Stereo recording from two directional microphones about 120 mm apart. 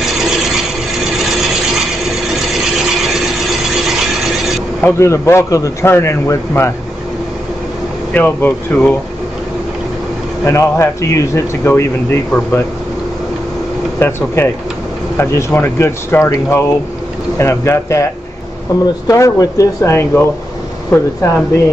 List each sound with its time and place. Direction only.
4.8 s speech: 20° left (ahead or behind)
8.1 s speech: 15° left (ahead or behind)
10.4 s speech: 25° left (ahead or behind)
13.9 s speech: 20° left (ahead or behind)